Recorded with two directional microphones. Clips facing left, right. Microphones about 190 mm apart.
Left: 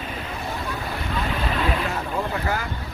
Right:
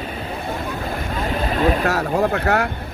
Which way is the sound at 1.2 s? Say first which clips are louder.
Right 7 dB; 40° right (ahead or behind).